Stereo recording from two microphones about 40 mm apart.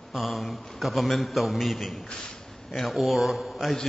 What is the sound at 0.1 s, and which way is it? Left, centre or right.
A man's voice, centre.